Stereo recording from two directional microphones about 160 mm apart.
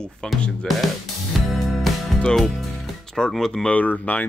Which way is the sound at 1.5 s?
Centre (ahead or behind).